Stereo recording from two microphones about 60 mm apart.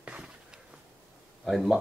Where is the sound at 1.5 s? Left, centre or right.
Centre.